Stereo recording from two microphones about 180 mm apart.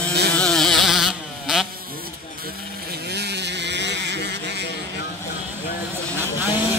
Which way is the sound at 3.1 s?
65° right (ahead or behind).